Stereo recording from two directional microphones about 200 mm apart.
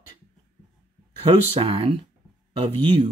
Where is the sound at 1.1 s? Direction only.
30° right (ahead or behind).